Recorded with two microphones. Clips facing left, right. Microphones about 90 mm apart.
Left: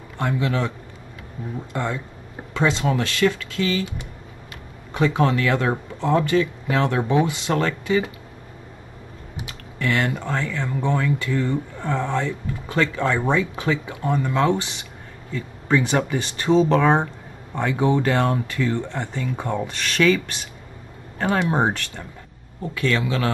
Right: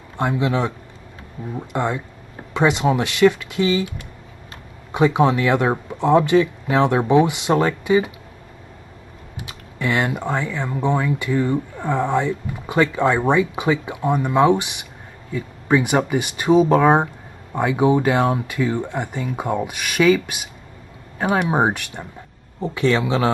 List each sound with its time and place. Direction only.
0.2 s speech: 20° right (ahead or behind)
4.9 s speech: 15° right (ahead or behind)
9.8 s speech: 20° right (ahead or behind)